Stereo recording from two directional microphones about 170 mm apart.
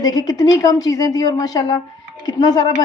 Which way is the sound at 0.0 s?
20° left (ahead or behind).